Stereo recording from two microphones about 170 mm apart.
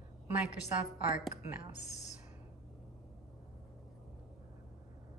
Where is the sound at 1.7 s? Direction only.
40° left (ahead or behind).